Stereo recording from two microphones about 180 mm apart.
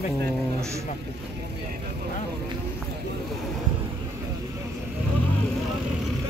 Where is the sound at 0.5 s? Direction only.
15° right (ahead or behind).